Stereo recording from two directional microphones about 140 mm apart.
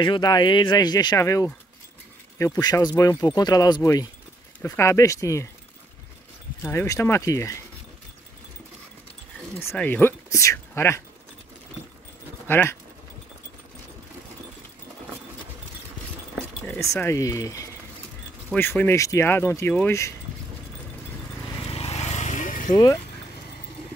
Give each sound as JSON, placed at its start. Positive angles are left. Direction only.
{"t": 0.0, "sound": "speech", "side_deg": 30}
{"t": 6.6, "sound": "speech", "side_deg": 15}
{"t": 9.6, "sound": "speech", "side_deg": 15}
{"t": 12.4, "sound": "speech", "side_deg": 15}
{"t": 16.6, "sound": "speech", "side_deg": 15}
{"t": 21.6, "sound": "vehicle", "side_deg": 45}